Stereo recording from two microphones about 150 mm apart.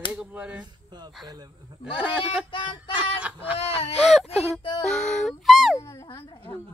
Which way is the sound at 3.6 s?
40° left (ahead or behind).